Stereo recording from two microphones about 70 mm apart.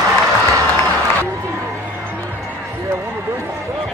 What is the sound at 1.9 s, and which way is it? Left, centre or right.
Music, right.